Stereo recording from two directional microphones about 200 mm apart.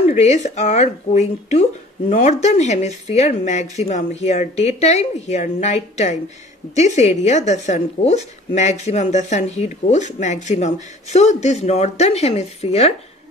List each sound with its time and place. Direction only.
0.1 s speech: 35° left (ahead or behind)